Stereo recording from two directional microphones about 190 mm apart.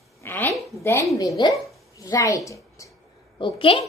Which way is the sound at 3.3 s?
25° left (ahead or behind).